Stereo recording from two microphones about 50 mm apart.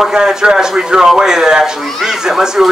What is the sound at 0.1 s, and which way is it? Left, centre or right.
Speech, centre.